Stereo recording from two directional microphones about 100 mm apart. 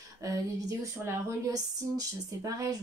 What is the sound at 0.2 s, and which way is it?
Speech, 35° right (ahead or behind).